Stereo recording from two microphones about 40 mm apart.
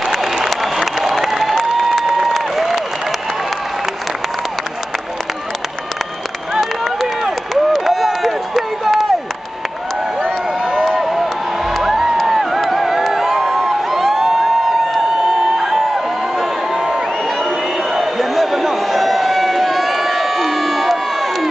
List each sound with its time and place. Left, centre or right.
0.0 s applause: centre
6.5 s run: centre
10.6 s crowd: centre
10.9 s crowd: centre
11.7 s music: centre